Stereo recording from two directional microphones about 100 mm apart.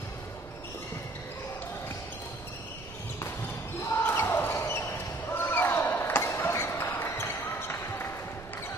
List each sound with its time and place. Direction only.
4.0 s basketball bounce: 20° left (ahead or behind)